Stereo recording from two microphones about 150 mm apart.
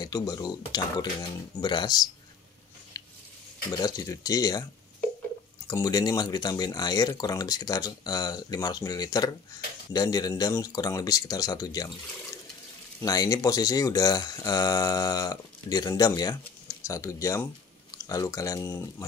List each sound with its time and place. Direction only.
0.0 s speech: 25° left (ahead or behind)
2.9 s a sound: 25° left (ahead or behind)
3.7 s speech: 25° left (ahead or behind)
5.7 s speech: 25° left (ahead or behind)
13.0 s speech: 25° left (ahead or behind)